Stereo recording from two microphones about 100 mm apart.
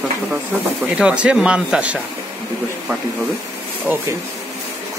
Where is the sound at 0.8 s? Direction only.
10° right (ahead or behind).